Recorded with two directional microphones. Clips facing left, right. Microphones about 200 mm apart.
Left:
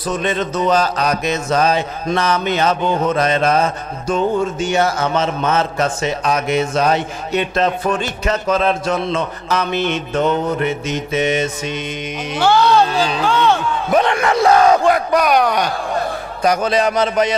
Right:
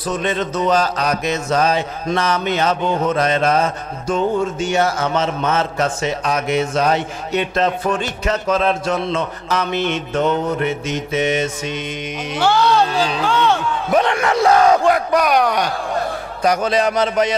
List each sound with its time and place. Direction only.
0.2 s a man's voice: 15° left (ahead or behind)
2.8 s a sound: 45° left (ahead or behind)
3.2 s a man's voice: 15° left (ahead or behind)
4.9 s a man's voice: 25° left (ahead or behind)
14.5 s a man's voice: 25° left (ahead or behind)